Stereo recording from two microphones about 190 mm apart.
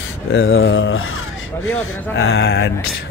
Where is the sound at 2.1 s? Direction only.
75° left (ahead or behind); by 2.7 s 60° left (ahead or behind).